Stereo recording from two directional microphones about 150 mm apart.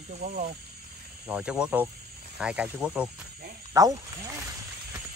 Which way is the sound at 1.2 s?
10° right (ahead or behind).